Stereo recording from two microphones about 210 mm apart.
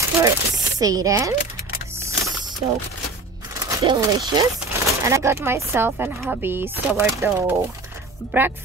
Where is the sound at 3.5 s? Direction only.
20° right (ahead or behind).